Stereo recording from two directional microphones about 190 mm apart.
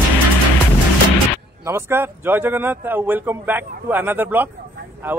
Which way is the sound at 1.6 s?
15° right (ahead or behind).